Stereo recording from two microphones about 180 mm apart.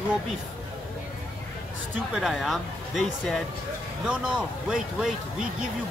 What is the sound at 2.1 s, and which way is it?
A man's voice, centre (ahead or behind).